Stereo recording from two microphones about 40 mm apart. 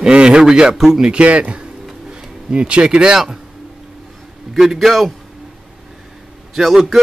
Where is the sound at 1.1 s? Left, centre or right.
Right.